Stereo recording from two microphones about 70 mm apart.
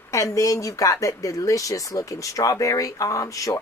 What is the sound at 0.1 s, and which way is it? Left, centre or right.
Speech, left.